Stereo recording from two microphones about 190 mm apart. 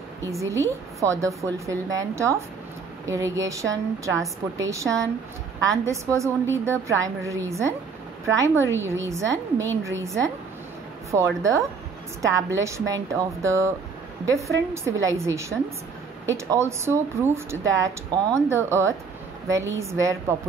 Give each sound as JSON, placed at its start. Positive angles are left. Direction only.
{"t": 0.4, "sound": "speech", "side_deg": -15}